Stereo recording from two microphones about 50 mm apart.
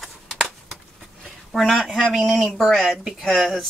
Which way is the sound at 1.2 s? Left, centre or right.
Centre.